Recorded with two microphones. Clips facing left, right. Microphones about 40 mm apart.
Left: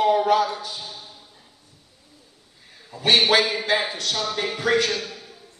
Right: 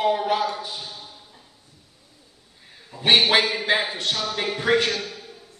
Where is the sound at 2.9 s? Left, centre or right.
Right.